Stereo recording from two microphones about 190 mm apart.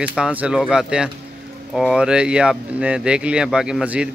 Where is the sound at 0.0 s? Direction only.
5° right (ahead or behind).